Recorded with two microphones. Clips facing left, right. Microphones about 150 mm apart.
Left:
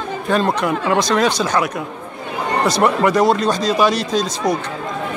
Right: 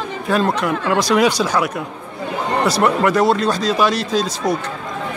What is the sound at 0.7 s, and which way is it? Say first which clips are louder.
Speech: left 1 dB; 10° left (ahead or behind).